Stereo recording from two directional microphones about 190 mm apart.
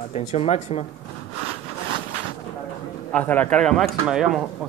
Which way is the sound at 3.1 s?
10° left (ahead or behind).